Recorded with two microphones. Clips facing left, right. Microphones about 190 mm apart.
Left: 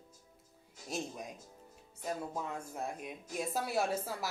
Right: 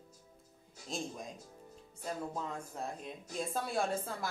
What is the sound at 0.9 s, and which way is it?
A woman's voice, 10° left (ahead or behind).